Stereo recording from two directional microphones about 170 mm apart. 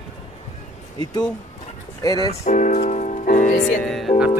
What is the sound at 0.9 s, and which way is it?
Speech, 25° left (ahead or behind).